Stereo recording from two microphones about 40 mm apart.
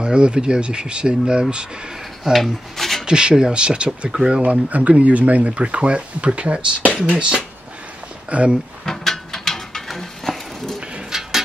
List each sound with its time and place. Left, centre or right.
0.0 s speech: right
2.3 s rub: centre
3.1 s speech: centre
8.8 s mechanisms: centre
10.8 s a sound: right
11.1 s a sound: centre